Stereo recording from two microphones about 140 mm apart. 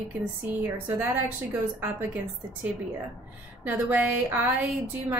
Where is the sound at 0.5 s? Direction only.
10° right (ahead or behind).